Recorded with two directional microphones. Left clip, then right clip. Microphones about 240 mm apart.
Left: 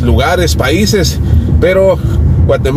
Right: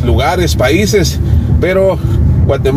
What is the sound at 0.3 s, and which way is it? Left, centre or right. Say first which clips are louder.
Speech: right 2 dB; left.